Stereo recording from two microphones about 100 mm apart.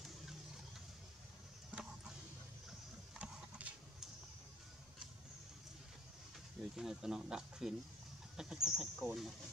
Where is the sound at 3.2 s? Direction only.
15° right (ahead or behind).